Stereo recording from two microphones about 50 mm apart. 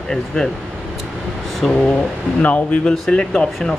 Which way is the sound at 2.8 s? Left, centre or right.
Centre.